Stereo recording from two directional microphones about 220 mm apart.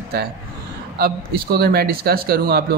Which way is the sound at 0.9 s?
45° right (ahead or behind).